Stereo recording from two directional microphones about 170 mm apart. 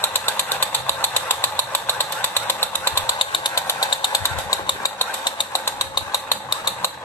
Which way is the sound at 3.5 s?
20° left (ahead or behind).